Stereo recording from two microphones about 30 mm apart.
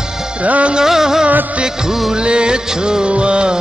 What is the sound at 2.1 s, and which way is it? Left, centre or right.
Music, right.